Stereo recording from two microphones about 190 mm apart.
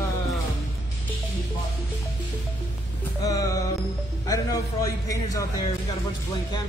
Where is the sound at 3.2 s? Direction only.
20° left (ahead or behind).